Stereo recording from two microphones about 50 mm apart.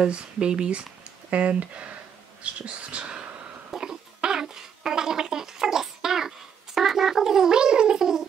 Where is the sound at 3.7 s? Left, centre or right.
Centre.